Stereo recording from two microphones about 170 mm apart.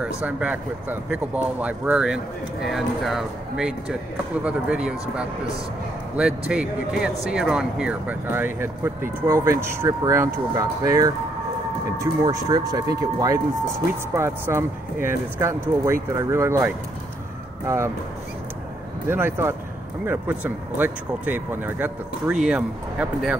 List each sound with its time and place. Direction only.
0.2 s speech: 5° right (ahead or behind)
6.1 s speech: 5° right (ahead or behind)
19.0 s speech: 15° right (ahead or behind)